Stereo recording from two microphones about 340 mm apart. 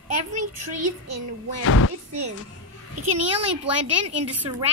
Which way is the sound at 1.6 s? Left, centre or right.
Left.